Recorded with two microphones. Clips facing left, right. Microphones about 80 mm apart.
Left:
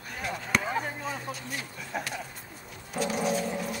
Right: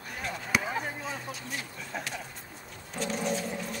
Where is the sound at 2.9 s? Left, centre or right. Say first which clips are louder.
Left 3 dB; centre.